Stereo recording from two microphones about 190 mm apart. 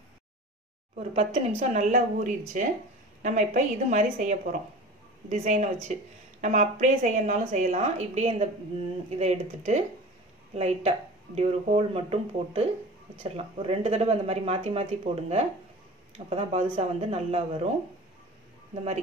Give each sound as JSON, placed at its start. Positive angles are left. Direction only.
{"t": 0.9, "sound": "a woman's voice", "side_deg": -35}